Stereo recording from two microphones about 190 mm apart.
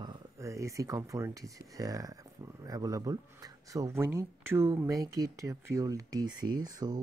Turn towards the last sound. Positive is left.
turn(degrees=-20)  # may be behind; listen again after turning